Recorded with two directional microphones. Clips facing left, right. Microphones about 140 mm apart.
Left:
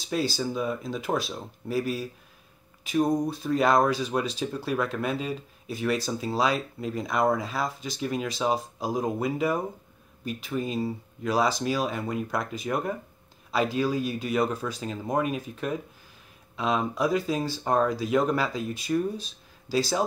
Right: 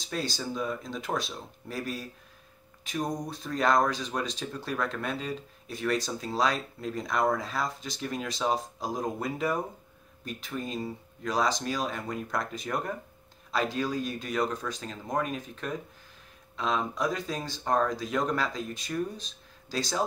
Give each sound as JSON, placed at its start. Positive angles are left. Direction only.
{"t": 0.0, "sound": "speech", "side_deg": 5}